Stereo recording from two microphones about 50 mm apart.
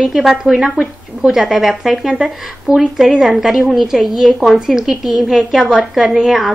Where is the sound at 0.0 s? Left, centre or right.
Centre.